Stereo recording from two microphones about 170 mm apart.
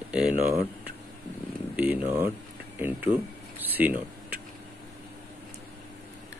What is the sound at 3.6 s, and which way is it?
Speech, 10° right (ahead or behind).